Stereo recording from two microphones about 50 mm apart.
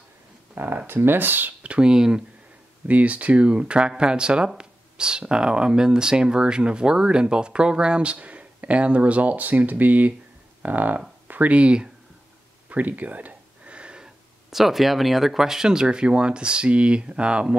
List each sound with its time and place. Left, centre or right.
0.8 s speech: right
1.7 s speech: centre
2.9 s speech: right
12.6 s a sound: right
14.5 s speech: centre; by 17.6 s right